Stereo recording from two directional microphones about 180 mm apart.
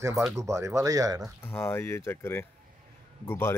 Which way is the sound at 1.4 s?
15° left (ahead or behind).